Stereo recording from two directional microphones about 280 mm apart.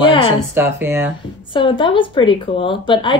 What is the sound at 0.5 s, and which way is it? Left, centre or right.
Speech, centre.